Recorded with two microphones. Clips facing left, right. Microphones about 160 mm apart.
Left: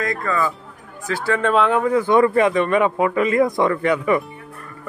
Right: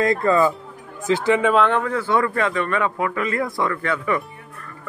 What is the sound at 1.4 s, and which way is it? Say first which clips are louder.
Speech: even; centre (ahead or behind).